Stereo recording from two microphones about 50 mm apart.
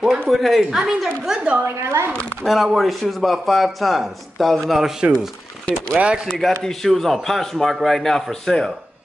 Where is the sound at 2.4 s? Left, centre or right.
Centre.